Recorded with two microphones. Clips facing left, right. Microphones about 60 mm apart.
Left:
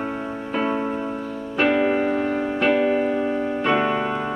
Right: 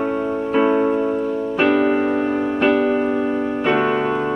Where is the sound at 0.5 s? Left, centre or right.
Centre.